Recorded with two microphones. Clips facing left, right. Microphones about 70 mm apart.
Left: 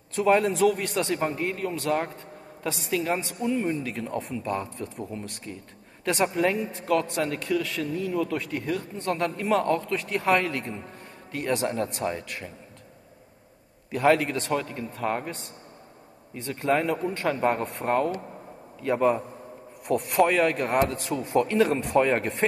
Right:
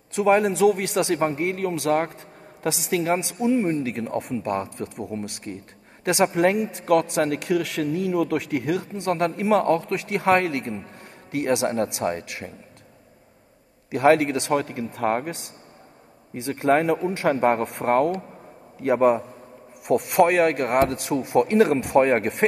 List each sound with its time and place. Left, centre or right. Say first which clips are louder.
0.1 s speech: right 3 dB; right
0.8 s speech: right 4 dB; right
1.1 s speech: right 4 dB; right
3.2 s speech: right 5 dB; right
4.6 s speech: right 3 dB; right
5.5 s speech: right 4 dB; right
13.9 s speech: right 4 dB; right
16.6 s speech: right 5 dB; right
17.3 s speech: right 5 dB; right
19.9 s speech: right 4 dB; right
21.4 s speech: right 4 dB; right
22.0 s speech: right 4 dB; right